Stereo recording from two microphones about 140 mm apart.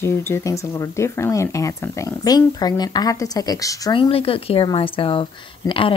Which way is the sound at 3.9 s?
40° left (ahead or behind).